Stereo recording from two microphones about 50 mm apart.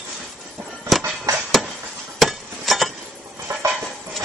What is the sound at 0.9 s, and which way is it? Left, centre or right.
Music, centre.